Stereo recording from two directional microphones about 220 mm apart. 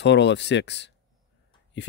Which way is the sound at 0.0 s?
50° left (ahead or behind).